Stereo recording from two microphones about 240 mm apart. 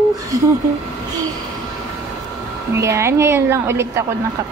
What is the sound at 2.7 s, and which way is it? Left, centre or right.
Speech, centre.